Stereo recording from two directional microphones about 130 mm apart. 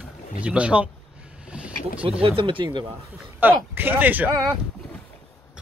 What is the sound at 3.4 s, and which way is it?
Speech, 15° right (ahead or behind).